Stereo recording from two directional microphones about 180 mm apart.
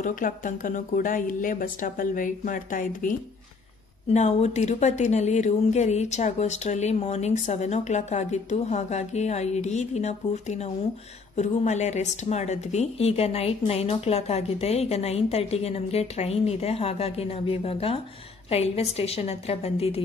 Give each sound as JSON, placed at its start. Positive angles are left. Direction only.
{"t": 0.0, "sound": "a woman's voice", "side_deg": 50}